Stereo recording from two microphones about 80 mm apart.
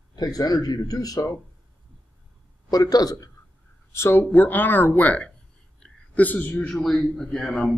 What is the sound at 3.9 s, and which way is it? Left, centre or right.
Speech, left.